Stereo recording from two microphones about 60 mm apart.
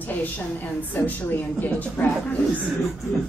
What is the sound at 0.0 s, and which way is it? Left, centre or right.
A woman's voice, left.